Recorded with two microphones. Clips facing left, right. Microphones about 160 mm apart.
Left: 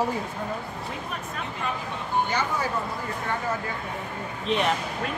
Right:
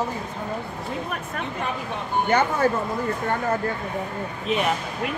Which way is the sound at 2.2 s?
55° right (ahead or behind).